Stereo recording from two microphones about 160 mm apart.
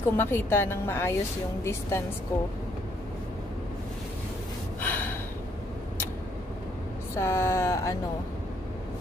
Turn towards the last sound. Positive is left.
turn(degrees=15)  # may be behind; listen again after turning